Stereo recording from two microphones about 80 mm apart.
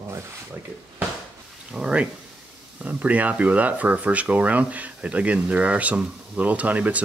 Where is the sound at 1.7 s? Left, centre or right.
Centre.